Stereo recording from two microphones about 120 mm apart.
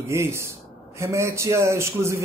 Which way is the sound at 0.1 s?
20° right (ahead or behind).